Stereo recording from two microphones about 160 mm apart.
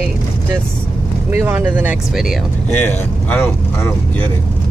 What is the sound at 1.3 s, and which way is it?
Speech, 15° right (ahead or behind).